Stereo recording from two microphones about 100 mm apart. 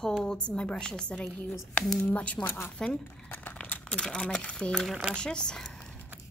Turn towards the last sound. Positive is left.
turn(degrees=5)  # may be behind; listen again after turning